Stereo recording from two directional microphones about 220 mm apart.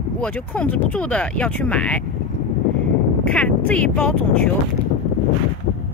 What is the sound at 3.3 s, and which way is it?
Speech, 5° left (ahead or behind).